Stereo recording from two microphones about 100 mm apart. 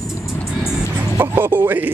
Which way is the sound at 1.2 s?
20° right (ahead or behind).